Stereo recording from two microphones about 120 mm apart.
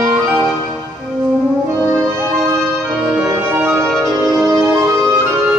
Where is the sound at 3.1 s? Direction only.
10° right (ahead or behind).